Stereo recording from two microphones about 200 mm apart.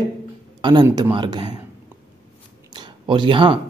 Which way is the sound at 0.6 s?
20° right (ahead or behind).